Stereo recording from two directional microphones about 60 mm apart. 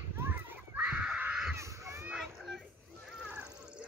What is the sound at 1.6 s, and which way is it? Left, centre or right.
Crow, right.